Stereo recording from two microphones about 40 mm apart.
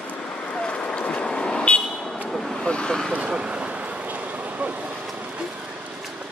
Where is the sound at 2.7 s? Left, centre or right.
Left.